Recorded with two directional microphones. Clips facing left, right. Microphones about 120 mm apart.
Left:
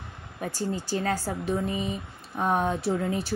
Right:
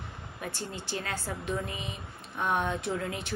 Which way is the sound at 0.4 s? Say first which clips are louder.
Left 8 dB; 40° left (ahead or behind).